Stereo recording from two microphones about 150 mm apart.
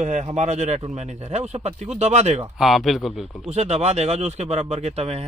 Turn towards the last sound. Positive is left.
turn(degrees=-45)  # may be behind; listen again after turning